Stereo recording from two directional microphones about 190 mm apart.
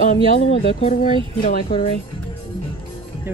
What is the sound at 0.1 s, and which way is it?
Speech, 30° left (ahead or behind).